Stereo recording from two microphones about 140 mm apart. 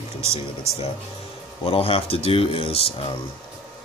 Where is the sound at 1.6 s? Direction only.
45° left (ahead or behind).